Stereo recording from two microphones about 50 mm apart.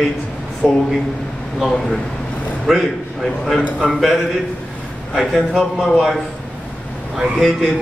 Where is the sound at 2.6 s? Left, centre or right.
Centre.